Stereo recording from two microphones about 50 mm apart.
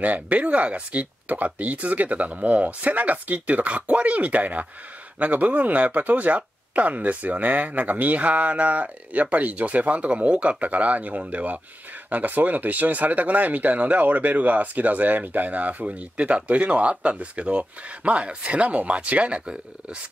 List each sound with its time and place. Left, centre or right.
0.0 s speech: right